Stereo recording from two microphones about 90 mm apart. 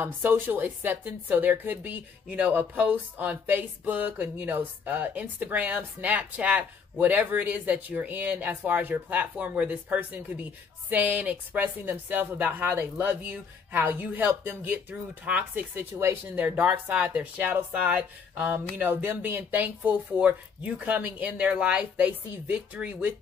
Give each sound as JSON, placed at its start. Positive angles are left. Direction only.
{"t": 0.0, "sound": "a woman's voice", "side_deg": -20}
{"t": 16.3, "sound": "speech", "side_deg": -15}